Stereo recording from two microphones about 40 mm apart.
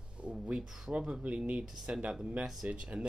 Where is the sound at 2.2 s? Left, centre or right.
Right.